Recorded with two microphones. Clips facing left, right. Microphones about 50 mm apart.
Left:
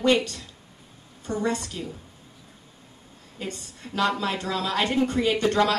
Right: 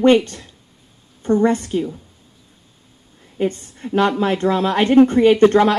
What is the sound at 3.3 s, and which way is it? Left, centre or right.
A woman's voice, right.